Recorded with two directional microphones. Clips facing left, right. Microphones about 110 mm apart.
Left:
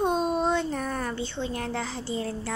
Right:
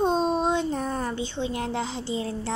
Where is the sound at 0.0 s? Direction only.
30° right (ahead or behind).